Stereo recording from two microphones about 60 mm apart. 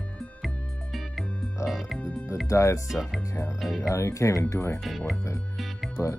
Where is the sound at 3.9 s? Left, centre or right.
Left.